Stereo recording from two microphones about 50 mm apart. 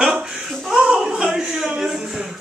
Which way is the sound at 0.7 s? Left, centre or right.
Centre.